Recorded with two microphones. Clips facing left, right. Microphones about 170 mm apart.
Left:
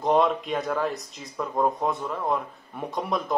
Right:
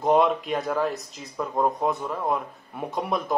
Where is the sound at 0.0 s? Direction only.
Centre (ahead or behind).